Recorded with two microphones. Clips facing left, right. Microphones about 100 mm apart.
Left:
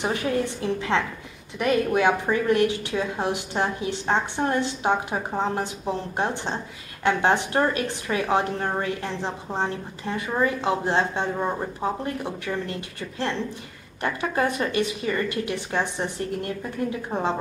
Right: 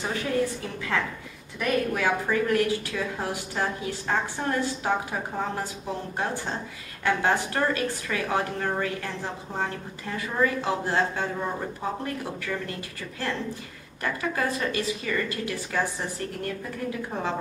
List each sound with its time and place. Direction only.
0.0 s a woman's voice: 20° left (ahead or behind)
14.0 s a woman's voice: 25° left (ahead or behind)